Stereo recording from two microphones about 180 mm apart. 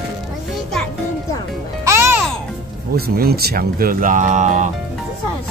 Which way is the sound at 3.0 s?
60° right (ahead or behind).